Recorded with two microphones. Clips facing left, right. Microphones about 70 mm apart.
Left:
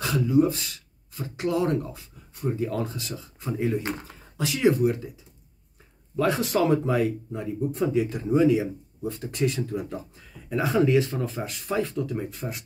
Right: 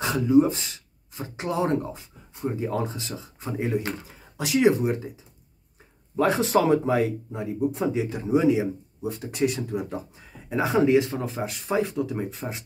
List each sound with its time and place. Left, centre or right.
0.0 s speech: right